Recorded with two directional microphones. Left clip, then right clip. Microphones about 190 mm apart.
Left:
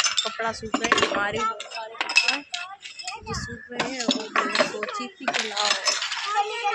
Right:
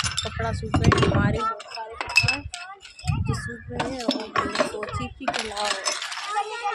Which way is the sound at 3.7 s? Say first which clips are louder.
Left 1 dB; 10° left (ahead or behind).